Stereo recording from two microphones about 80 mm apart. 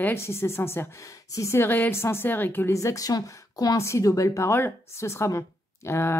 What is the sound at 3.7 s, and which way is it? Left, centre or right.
A woman's voice, left.